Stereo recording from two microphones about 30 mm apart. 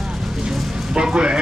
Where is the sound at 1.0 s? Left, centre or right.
Right.